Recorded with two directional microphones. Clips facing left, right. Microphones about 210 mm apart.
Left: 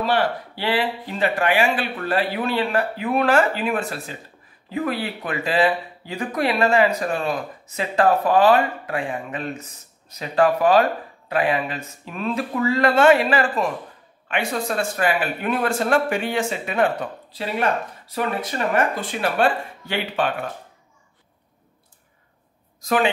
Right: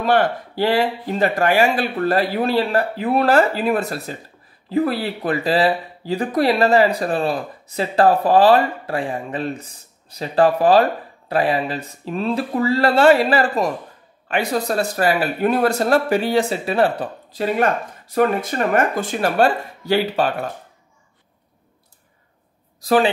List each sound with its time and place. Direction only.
0.0 s speech: 50° right (ahead or behind); by 17.1 s 35° right (ahead or behind)
17.3 s speech: 45° right (ahead or behind)
22.8 s a woman's voice: 35° right (ahead or behind)